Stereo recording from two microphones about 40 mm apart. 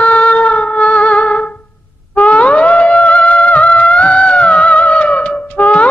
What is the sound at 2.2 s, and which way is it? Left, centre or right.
Music, left.